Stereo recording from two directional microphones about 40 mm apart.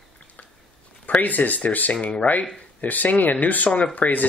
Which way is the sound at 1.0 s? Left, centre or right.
Left.